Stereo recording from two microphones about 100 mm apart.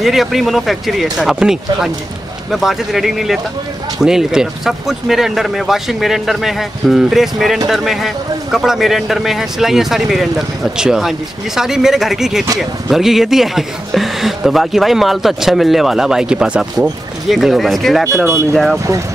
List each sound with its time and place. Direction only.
0.0 s speech: centre (ahead or behind)
18.2 s speech: 25° right (ahead or behind)
18.5 s speech: centre (ahead or behind)